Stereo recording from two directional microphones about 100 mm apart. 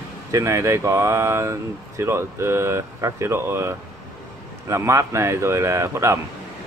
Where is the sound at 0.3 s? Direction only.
30° right (ahead or behind).